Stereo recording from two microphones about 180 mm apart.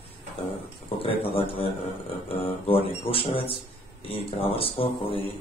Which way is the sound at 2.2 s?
30° left (ahead or behind).